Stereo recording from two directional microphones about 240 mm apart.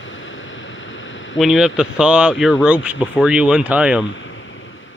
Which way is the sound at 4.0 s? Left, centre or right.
Left.